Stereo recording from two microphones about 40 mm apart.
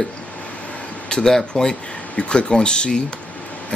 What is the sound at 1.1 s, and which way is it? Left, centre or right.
Speech, centre.